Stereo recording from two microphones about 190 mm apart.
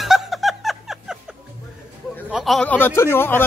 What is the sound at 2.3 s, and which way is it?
A man's voice, centre (ahead or behind).